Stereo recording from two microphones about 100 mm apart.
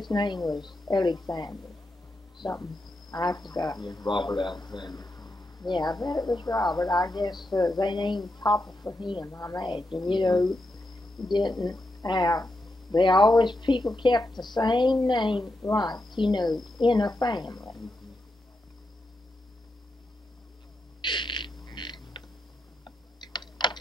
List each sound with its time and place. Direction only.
0.1 s a woman's voice: 45° left (ahead or behind)
8.8 s a woman's voice: 25° left (ahead or behind)
9.6 s speech: 50° left (ahead or behind)
10.4 s cricket: centre (ahead or behind)
11.3 s speech: 45° left (ahead or behind)
16.5 s speech: centre (ahead or behind)
16.8 s speech: 45° left (ahead or behind)
21.0 s frog: 50° left (ahead or behind)
22.8 s typing: 50° left (ahead or behind)